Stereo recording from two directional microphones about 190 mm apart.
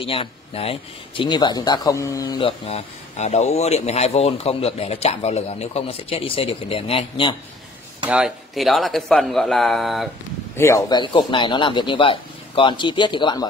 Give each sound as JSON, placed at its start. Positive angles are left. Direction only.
{"t": 0.0, "sound": "speech", "side_deg": 30}
{"t": 8.1, "sound": "speech", "side_deg": -5}
{"t": 10.5, "sound": "speech", "side_deg": 15}